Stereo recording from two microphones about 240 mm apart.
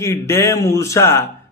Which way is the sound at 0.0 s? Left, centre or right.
Centre.